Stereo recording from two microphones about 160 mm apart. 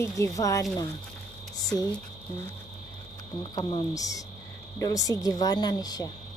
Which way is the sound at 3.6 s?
30° left (ahead or behind).